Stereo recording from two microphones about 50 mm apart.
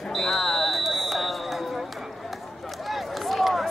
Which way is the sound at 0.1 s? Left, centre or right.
Centre.